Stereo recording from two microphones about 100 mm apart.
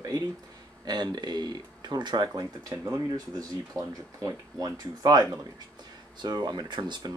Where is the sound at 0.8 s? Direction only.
45° right (ahead or behind).